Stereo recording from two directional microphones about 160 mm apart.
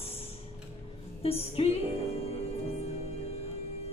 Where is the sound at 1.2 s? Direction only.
40° left (ahead or behind).